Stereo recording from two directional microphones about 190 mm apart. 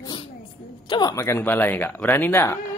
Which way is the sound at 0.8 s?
20° left (ahead or behind).